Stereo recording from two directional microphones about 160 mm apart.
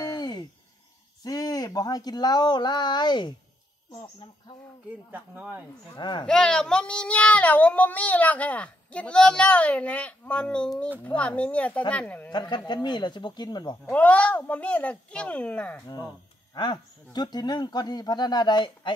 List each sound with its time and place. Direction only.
0.0 s a sound: 25° left (ahead or behind)
1.2 s speech: 25° left (ahead or behind)
5.1 s speech: 10° right (ahead or behind)
5.9 s speech: 30° left (ahead or behind)
6.2 s speech: 5° left (ahead or behind)
12.3 s speech: 25° left (ahead or behind)
13.8 s speech: 10° left (ahead or behind)
16.5 s speech: 25° left (ahead or behind)